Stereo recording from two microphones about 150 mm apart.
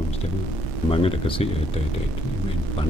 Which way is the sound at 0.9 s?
40° left (ahead or behind).